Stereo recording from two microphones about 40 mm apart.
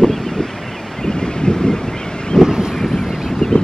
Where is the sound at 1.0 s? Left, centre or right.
Centre.